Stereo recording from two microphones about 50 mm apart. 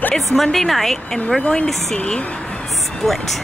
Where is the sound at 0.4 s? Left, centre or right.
Centre.